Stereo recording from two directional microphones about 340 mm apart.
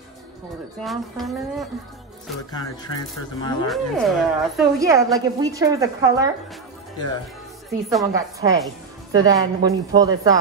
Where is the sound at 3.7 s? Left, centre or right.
Centre.